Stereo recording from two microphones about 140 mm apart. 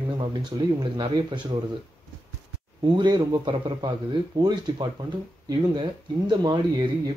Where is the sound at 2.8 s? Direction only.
35° right (ahead or behind).